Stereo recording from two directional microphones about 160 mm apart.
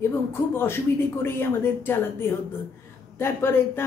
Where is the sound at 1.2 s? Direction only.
15° left (ahead or behind).